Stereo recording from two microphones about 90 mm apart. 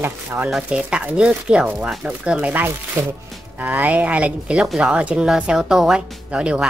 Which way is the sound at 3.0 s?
35° right (ahead or behind).